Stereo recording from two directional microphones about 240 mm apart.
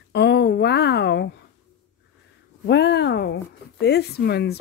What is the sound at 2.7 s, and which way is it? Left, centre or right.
Speech, left.